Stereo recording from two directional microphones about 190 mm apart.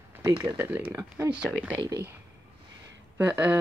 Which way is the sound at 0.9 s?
10° right (ahead or behind).